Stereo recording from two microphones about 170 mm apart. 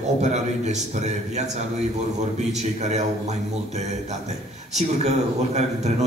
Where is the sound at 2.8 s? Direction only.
40° right (ahead or behind).